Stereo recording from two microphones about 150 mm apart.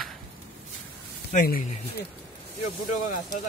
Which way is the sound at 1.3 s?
60° left (ahead or behind).